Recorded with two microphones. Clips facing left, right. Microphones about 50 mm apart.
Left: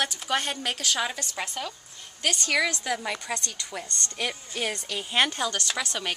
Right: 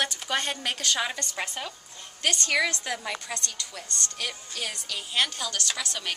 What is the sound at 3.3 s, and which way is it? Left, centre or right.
A woman's voice, centre.